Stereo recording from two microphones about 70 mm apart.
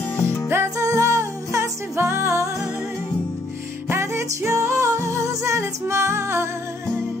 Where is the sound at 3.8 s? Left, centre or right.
Right.